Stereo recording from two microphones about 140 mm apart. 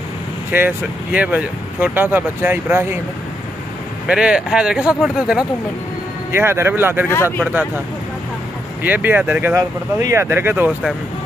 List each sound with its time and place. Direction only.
0.5 s speech: 10° right (ahead or behind)
4.1 s speech: 5° right (ahead or behind)
6.3 s speech: 15° right (ahead or behind)
8.8 s speech: 15° right (ahead or behind)